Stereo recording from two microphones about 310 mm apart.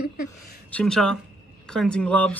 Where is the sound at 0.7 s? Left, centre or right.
Centre.